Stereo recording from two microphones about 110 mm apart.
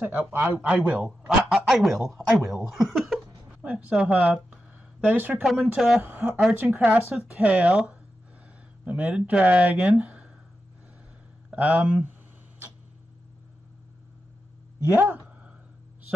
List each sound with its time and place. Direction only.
0.0 s speech: 15° right (ahead or behind)
3.6 s speech: 10° right (ahead or behind)
5.4 s speech: 5° right (ahead or behind)
6.0 s speech: 15° right (ahead or behind)
11.5 s speech: 15° right (ahead or behind)
14.9 s speech: 20° right (ahead or behind)